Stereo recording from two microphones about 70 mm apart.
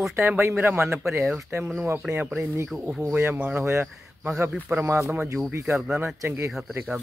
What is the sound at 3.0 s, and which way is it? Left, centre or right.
Speech, right.